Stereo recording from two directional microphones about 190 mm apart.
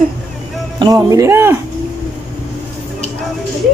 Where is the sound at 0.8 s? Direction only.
20° right (ahead or behind).